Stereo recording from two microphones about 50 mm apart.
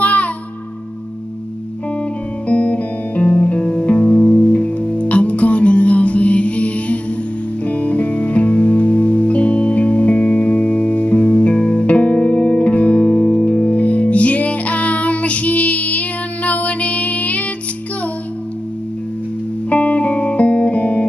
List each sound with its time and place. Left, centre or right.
0.0 s music: left
2.4 s music: left
19.7 s music: left